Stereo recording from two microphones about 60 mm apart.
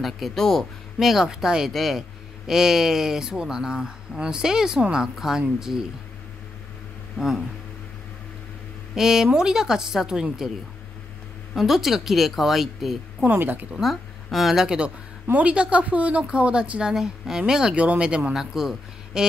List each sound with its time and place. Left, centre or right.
0.0 s speech: centre
0.9 s speech: centre
7.2 s speech: centre
8.9 s speech: centre
11.5 s speech: centre
13.3 s speech: right
13.7 s a woman's voice: centre
15.3 s speech: right
18.3 s speech: centre